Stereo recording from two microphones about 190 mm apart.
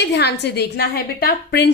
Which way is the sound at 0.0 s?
65° left (ahead or behind).